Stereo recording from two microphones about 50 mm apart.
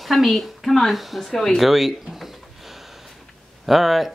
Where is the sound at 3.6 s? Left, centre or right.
Centre.